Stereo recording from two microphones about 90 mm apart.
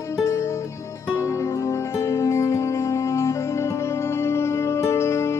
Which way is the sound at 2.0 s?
35° left (ahead or behind).